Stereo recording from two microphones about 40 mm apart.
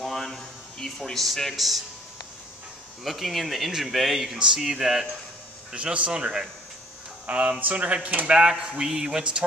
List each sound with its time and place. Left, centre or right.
0.0 s a sound: centre
1.1 s speech: centre
3.0 s speech: centre
5.8 s speech: right
8.3 s speech: right